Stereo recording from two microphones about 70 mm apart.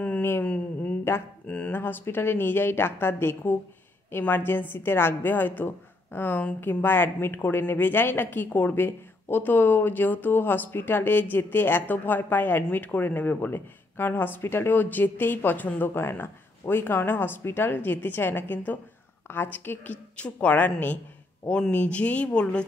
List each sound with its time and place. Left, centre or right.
0.2 s a sound: left
1.1 s a woman's voice: left
1.5 s speech: centre
1.8 s a woman's voice: left
20.2 s a woman's voice: centre